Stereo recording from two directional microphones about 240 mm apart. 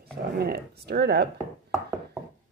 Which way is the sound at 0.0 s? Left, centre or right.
Right.